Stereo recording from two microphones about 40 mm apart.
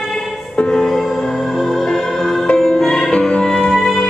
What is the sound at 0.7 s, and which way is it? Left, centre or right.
Music, centre.